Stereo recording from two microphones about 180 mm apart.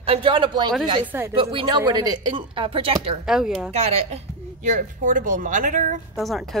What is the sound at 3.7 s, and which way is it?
Speech, 35° right (ahead or behind).